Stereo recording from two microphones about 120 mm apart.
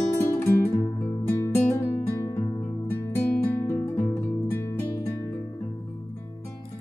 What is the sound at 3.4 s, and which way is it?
Music, 20° left (ahead or behind).